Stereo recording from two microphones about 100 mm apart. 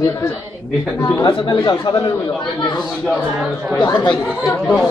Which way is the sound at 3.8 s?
50° left (ahead or behind).